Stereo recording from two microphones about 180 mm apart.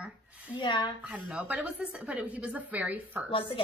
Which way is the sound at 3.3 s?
30° left (ahead or behind).